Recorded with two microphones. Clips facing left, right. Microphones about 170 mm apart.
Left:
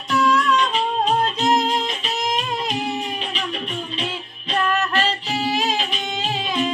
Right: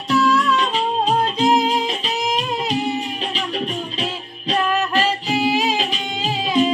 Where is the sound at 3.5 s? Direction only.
35° right (ahead or behind).